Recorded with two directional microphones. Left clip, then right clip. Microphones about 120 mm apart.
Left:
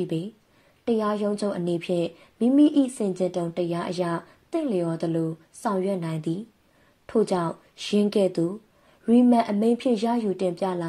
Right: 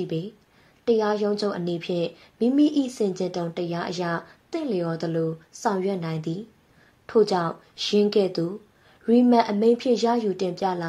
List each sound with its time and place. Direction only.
0.0 s a woman's voice: 45° left (ahead or behind)